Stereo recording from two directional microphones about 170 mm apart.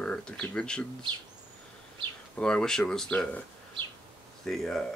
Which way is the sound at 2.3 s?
5° left (ahead or behind).